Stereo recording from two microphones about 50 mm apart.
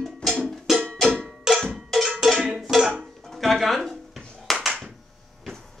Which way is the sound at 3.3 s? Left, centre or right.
Centre.